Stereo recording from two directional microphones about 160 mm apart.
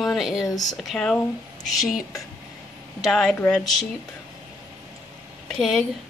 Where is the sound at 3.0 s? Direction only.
5° left (ahead or behind).